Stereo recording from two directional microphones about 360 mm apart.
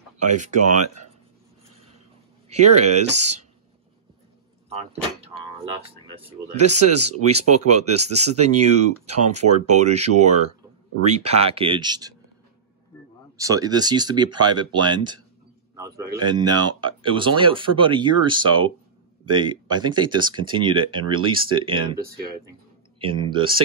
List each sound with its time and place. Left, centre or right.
0.2 s speech: centre
2.5 s speech: centre
4.6 s door: centre
6.1 s speech: centre
13.4 s speech: centre
15.7 s a sound: centre
16.3 s speech: centre